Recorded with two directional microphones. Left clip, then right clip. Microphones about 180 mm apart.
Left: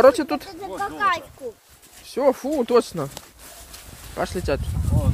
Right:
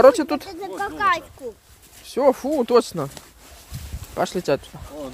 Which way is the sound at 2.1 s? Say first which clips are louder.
Right 2 dB; 20° right (ahead or behind).